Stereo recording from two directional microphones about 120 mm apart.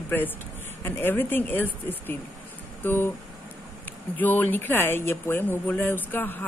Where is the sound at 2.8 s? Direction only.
20° left (ahead or behind).